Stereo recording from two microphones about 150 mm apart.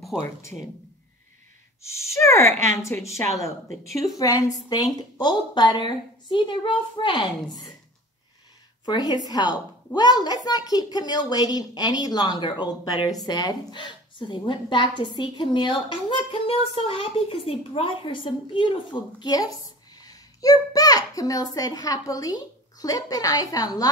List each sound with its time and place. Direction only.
0.1 s speech: 5° right (ahead or behind)
1.8 s a child's voice: 20° left (ahead or behind)
8.8 s a child's voice: 30° left (ahead or behind)